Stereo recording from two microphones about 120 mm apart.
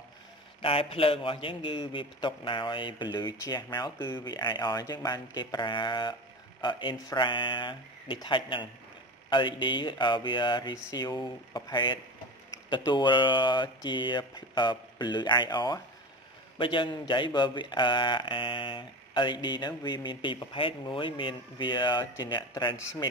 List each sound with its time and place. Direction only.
0.6 s a man's voice: 50° left (ahead or behind)